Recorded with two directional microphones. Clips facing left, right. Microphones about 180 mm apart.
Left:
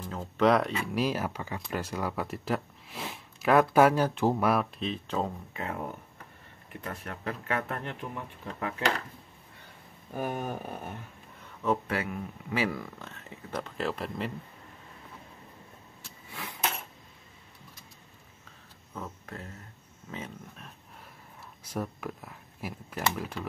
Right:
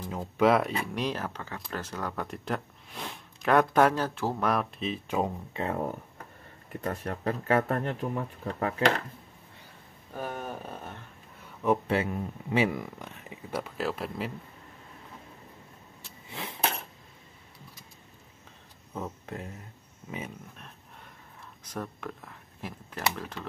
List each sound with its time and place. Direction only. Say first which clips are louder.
0.0 s speech: right 1 dB; 10° right (ahead or behind)
0.9 s speech: left 3 dB; 5° left (ahead or behind)
4.5 s speech: left 1 dB; centre (ahead or behind)
5.5 s speech: right 5 dB; 30° right (ahead or behind)
10.1 s speech: left 3 dB; 15° left (ahead or behind)
11.6 s speech: right 3 dB; 20° right (ahead or behind); by 14.3 s centre (ahead or behind)
16.3 s a sound: right 3 dB; 25° right (ahead or behind)
18.9 s speech: right 4 dB; 20° right (ahead or behind)
20.5 s a sound: even; centre (ahead or behind)
21.6 s speech: left 2 dB; 10° left (ahead or behind)